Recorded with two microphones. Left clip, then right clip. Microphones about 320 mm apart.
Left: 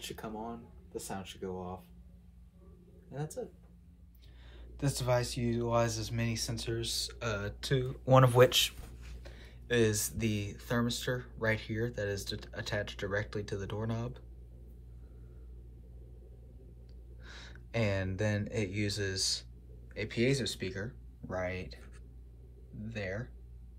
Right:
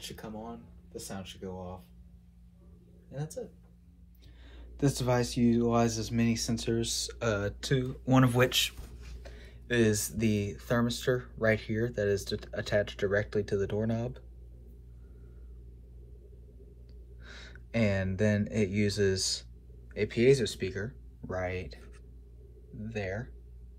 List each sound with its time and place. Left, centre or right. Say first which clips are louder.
4.7 s speech: right 3 dB; centre
17.2 s speech: right 2 dB; centre